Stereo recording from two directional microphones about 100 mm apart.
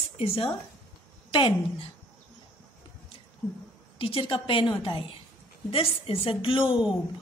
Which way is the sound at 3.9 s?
60° left (ahead or behind).